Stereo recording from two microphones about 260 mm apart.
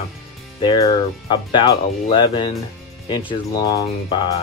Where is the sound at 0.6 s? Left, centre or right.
Centre.